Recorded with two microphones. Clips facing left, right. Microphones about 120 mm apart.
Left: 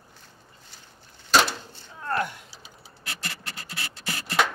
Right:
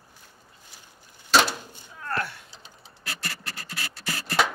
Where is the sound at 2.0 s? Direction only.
20° left (ahead or behind).